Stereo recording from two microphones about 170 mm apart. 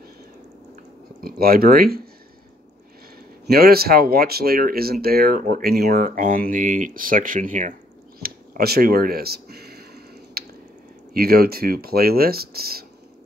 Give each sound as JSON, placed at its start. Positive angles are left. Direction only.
{"t": 1.2, "sound": "speech", "side_deg": -60}
{"t": 3.4, "sound": "speech", "side_deg": -65}
{"t": 8.2, "sound": "a sound", "side_deg": -65}
{"t": 11.1, "sound": "speech", "side_deg": -65}